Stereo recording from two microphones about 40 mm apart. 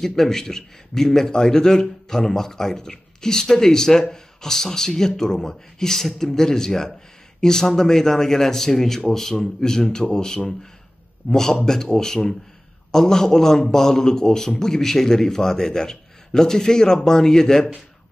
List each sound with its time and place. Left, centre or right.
0.0 s a man's voice: centre